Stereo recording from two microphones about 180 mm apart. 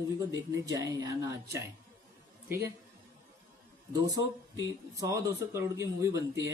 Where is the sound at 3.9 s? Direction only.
20° right (ahead or behind).